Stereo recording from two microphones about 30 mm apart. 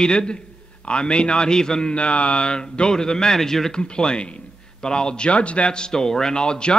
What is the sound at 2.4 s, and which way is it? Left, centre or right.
A man's voice, left.